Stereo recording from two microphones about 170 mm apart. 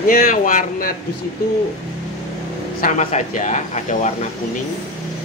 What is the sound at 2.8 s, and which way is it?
Speech, 45° left (ahead or behind).